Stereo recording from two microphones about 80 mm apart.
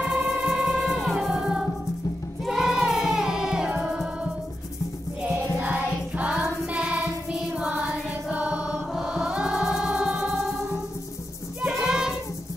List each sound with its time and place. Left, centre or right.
0.2 s music: right
0.5 s music: centre